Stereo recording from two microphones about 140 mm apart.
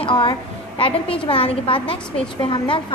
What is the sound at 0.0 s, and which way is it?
A woman's voice, 35° left (ahead or behind).